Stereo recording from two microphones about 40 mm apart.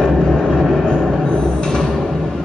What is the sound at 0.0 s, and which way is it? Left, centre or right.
Vehicle, centre.